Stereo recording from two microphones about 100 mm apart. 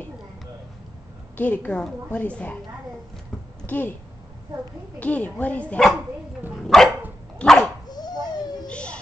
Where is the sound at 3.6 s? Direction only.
20° left (ahead or behind).